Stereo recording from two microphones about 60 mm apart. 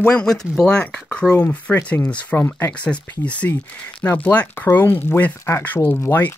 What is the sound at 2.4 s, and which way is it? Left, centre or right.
Speech, left.